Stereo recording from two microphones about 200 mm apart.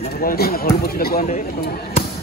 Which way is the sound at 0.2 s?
50° left (ahead or behind).